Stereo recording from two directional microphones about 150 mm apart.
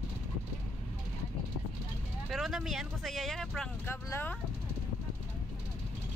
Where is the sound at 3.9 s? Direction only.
15° left (ahead or behind).